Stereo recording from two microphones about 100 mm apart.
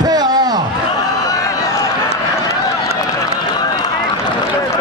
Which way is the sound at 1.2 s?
35° left (ahead or behind).